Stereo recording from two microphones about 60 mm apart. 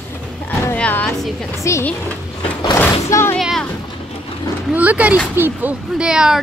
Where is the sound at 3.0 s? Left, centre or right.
Left.